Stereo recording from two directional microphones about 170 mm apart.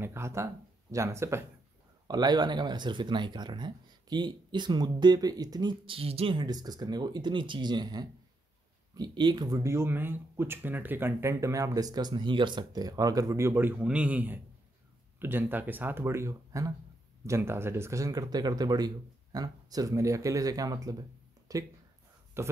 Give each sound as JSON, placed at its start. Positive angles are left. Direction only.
{"t": 0.0, "sound": "speech", "side_deg": -15}